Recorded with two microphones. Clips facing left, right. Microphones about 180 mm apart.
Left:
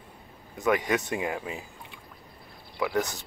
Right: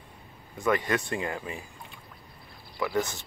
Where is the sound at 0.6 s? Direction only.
15° left (ahead or behind).